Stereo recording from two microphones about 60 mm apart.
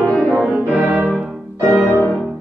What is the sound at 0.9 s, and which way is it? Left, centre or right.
Music, right.